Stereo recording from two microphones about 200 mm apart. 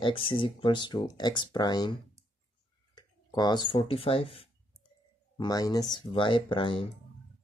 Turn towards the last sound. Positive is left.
turn(degrees=25)  # may be behind; listen again after turning